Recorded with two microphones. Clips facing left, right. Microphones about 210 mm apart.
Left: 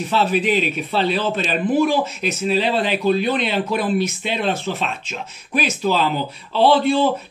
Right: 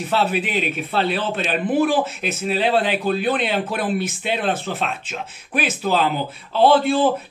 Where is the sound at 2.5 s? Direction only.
50° right (ahead or behind).